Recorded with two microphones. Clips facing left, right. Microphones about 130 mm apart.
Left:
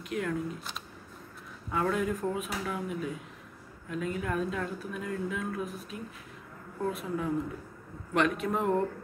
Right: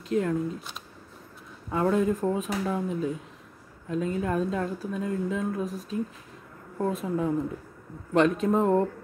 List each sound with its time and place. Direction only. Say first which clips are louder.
0.1 s speech: right 7 dB; 30° right (ahead or behind)
1.7 s a woman's voice: right 5 dB; 30° right (ahead or behind)